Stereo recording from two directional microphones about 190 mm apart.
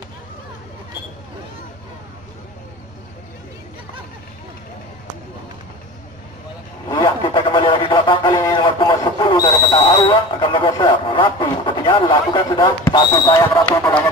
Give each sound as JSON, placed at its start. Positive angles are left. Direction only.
{"t": 6.9, "sound": "radio", "side_deg": 25}